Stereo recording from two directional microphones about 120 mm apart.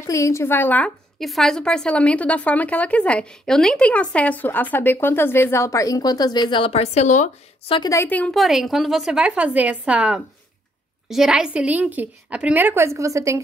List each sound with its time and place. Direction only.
0.0 s a woman's voice: 25° left (ahead or behind)
1.2 s a woman's voice: centre (ahead or behind); by 6.7 s 40° left (ahead or behind)
6.7 s a woman's voice: 60° left (ahead or behind); by 7.2 s 80° left
7.8 s a woman's voice: 25° left (ahead or behind)
8.1 s a woman's voice: 10° left (ahead or behind)
8.4 s a woman's voice: centre (ahead or behind); by 13.4 s 25° right (ahead or behind)